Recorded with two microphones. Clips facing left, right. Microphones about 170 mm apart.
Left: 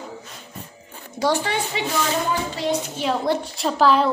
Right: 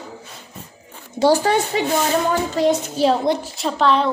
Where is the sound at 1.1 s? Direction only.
35° right (ahead or behind).